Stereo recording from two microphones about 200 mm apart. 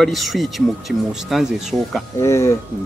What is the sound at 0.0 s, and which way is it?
Speech, centre (ahead or behind).